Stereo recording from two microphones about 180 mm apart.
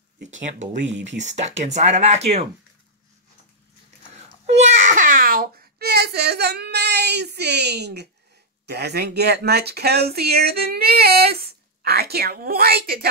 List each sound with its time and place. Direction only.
0.3 s speech: 45° right (ahead or behind)
4.5 s a sound: 40° right (ahead or behind); by 8.1 s 65° right (ahead or behind)
8.6 s speech: 65° right (ahead or behind)